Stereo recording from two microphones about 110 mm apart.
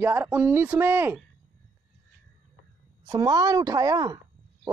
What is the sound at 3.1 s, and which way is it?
A woman's voice, 35° right (ahead or behind).